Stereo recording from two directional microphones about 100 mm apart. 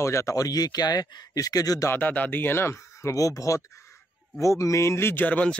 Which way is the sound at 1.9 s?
20° left (ahead or behind).